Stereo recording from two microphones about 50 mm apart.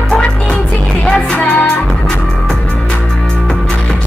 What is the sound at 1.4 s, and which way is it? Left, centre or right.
Music, left.